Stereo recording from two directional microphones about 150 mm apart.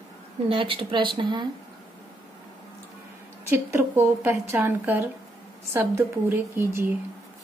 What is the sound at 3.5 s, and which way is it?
A woman's voice, 15° right (ahead or behind).